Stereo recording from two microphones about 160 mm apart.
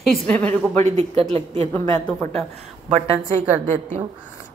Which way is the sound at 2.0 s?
5° left (ahead or behind).